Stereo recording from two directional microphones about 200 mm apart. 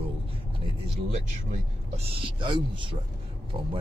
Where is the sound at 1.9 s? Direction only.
30° right (ahead or behind).